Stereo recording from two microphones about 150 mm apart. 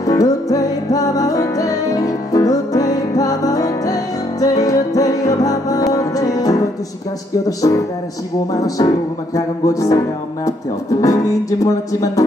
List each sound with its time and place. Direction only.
0.0 s music: 25° left (ahead or behind)
11.6 s music: 25° left (ahead or behind)